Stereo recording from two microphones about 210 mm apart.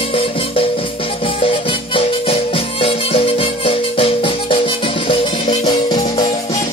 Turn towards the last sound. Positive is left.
turn(degrees=20)  # may be behind; listen again after turning